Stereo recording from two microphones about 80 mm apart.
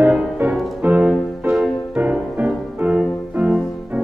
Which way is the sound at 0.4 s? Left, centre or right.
Centre.